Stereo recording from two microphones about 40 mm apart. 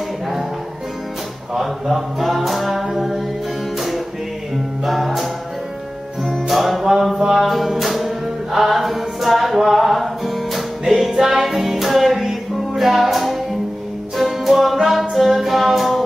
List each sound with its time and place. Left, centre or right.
1.5 s music: centre
4.8 s music: centre
11.1 s music: centre
11.4 s music: centre